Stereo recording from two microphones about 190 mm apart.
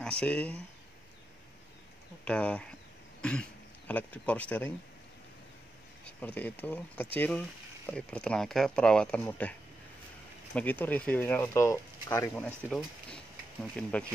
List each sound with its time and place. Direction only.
0.0 s speech: 5° left (ahead or behind)
2.2 s speech: 5° left (ahead or behind)
6.0 s speech: 10° left (ahead or behind)
12.6 s speech: centre (ahead or behind)